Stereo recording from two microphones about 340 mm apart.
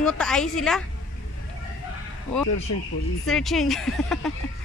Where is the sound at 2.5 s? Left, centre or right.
Left.